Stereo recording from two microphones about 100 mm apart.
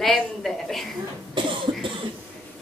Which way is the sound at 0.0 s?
Centre (ahead or behind).